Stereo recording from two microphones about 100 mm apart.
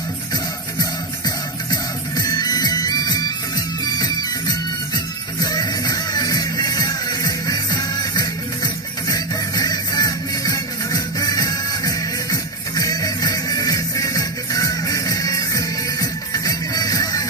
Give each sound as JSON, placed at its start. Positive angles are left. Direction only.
{"t": 0.3, "sound": "music", "side_deg": 40}